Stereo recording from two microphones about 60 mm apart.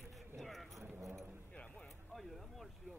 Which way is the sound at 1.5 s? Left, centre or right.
Centre.